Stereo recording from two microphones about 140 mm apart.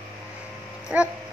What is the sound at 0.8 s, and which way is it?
Dog, 5° right (ahead or behind).